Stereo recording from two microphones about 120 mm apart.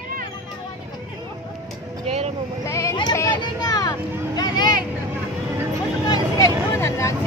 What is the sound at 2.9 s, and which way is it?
Vehicle, 30° left (ahead or behind).